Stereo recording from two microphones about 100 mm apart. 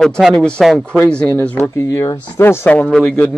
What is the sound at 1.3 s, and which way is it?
Speech, 20° left (ahead or behind).